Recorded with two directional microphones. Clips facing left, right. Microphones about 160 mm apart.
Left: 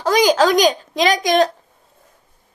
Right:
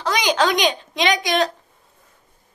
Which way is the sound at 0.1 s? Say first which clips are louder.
Left 6 dB; 40° left (ahead or behind).